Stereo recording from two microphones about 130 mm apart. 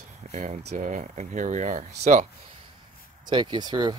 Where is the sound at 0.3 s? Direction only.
60° right (ahead or behind); by 2.2 s 80° right.